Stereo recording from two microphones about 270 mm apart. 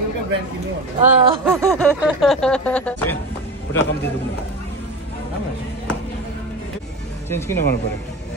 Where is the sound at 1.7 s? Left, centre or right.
Centre.